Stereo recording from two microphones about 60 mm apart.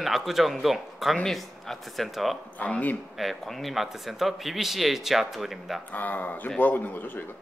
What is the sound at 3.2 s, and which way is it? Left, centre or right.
A man's voice, centre.